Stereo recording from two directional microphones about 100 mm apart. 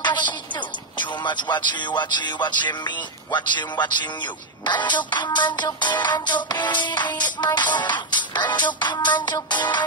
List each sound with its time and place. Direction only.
0.0 s music: 50° left (ahead or behind)
0.9 s speech: 50° left (ahead or behind)